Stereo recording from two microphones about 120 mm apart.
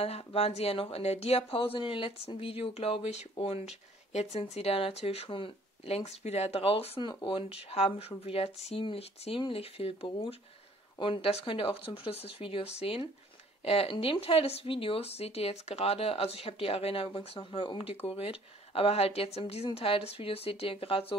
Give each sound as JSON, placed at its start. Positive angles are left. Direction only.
{"t": 0.0, "sound": "speech", "side_deg": 55}
{"t": 4.1, "sound": "speech", "side_deg": 65}
{"t": 7.7, "sound": "speech", "side_deg": 55}